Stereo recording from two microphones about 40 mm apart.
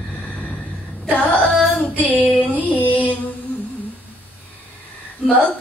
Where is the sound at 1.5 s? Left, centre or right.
Centre.